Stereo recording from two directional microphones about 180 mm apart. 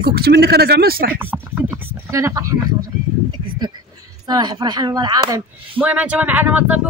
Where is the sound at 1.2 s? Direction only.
10° right (ahead or behind).